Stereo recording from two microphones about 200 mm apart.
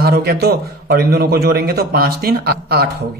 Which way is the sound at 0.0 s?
50° right (ahead or behind).